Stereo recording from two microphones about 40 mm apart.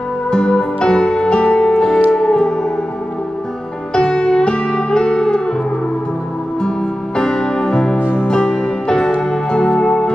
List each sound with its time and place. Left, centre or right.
0.3 s music: left
3.9 s music: left
7.2 s music: centre